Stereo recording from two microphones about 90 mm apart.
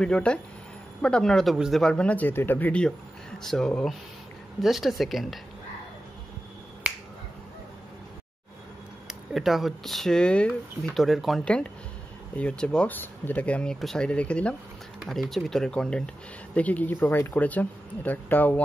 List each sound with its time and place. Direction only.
0.0 s speech: 10° left (ahead or behind)
2.7 s speech: 10° left (ahead or behind)
9.0 s speech: centre (ahead or behind)
11.0 s speech: centre (ahead or behind)
11.4 s speech: 10° left (ahead or behind)
15.0 s speech: 5° left (ahead or behind); by 18.6 s 20° left (ahead or behind)